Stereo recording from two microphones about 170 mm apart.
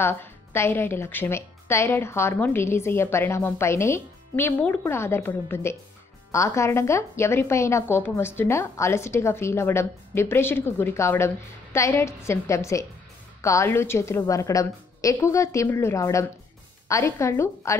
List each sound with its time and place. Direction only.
0.0 s a woman's voice: 15° left (ahead or behind)